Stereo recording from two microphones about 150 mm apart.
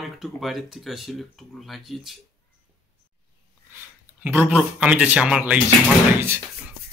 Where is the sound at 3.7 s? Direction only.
15° right (ahead or behind).